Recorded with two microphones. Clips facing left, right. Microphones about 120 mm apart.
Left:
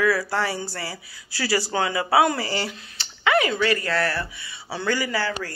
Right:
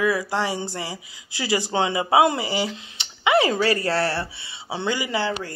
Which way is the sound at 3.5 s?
30° right (ahead or behind).